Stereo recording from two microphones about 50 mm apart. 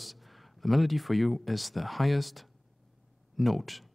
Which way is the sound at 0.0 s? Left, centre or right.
Centre.